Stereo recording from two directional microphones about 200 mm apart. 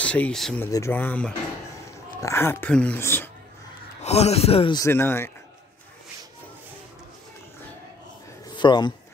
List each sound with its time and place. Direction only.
0.0 s speech: 5° left (ahead or behind)
0.7 s speech: 15° left (ahead or behind)
4.0 s a man's voice: 30° left (ahead or behind)
4.8 s speech: 10° left (ahead or behind)
8.5 s speech: 25° left (ahead or behind)